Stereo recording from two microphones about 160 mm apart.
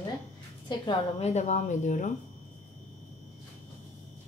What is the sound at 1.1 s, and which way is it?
Speech, 45° left (ahead or behind).